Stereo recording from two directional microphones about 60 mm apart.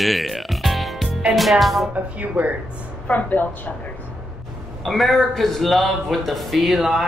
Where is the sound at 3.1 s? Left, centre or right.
Left.